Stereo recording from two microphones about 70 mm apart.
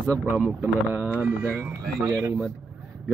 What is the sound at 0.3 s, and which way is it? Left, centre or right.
Speech, right.